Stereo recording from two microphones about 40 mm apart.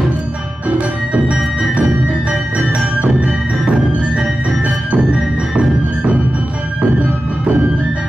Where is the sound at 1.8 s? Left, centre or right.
Right.